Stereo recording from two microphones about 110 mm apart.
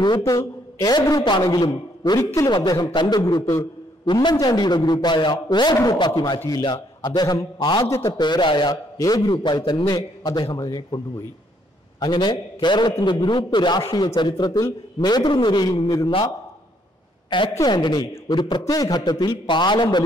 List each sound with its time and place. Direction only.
0.0 s a man's voice: 40° left (ahead or behind)
2.5 s a man's voice: 40° left (ahead or behind)
8.9 s a man's voice: 35° left (ahead or behind)
12.0 s a man's voice: 40° left (ahead or behind)
17.6 s a man's voice: 45° left (ahead or behind)